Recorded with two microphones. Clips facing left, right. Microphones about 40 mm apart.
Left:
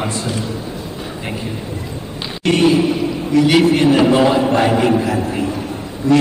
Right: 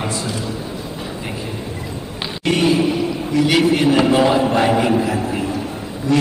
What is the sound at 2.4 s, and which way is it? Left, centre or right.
A man's voice, centre.